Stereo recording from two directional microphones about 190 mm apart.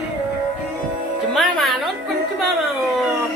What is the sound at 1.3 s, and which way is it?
Music, centre (ahead or behind).